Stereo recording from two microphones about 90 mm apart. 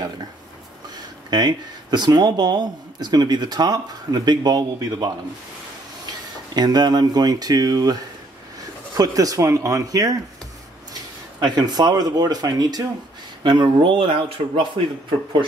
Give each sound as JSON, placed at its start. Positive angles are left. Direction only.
{"t": 1.3, "sound": "speech", "side_deg": -50}
{"t": 6.5, "sound": "speech", "side_deg": -50}
{"t": 13.4, "sound": "speech", "side_deg": -60}
{"t": 14.4, "sound": "a man's voice", "side_deg": -90}